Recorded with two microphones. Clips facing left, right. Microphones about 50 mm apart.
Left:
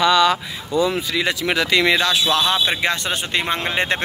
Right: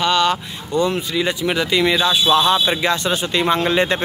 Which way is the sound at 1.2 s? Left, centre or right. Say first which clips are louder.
Right 1 dB; left.